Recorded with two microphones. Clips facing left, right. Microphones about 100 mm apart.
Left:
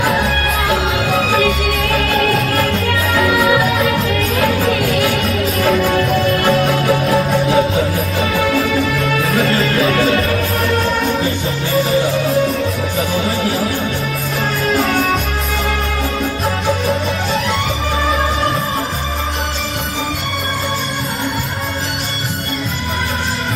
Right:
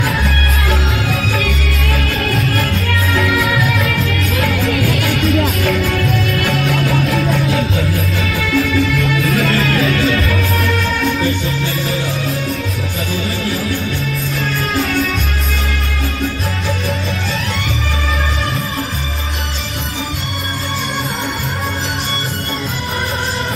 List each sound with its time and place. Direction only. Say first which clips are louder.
1.1 s music: left 5 dB; 40° left (ahead or behind)